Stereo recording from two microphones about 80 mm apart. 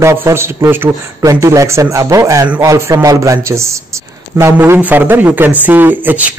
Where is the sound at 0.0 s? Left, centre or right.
Right.